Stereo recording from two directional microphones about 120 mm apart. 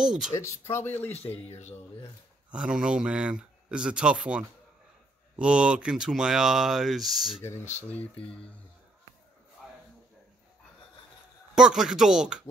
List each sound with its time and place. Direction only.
0.0 s speech: 5° right (ahead or behind)
0.4 s speech: 25° left (ahead or behind)
1.1 s speech: 60° left (ahead or behind)
2.5 s speech: 5° right (ahead or behind)
7.9 s speech: 10° left (ahead or behind)
9.6 s a sound: centre (ahead or behind)
11.5 s speech: 5° right (ahead or behind)